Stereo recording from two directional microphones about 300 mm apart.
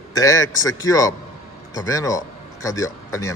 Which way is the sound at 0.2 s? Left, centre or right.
Centre.